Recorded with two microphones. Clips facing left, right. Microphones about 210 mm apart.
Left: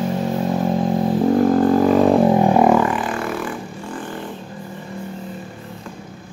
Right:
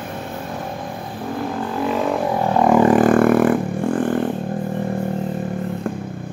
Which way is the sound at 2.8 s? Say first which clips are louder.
Right 10 dB; 45° right (ahead or behind).